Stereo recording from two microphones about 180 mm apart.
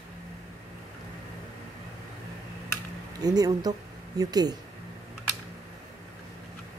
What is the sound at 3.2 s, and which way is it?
Speech, 20° right (ahead or behind).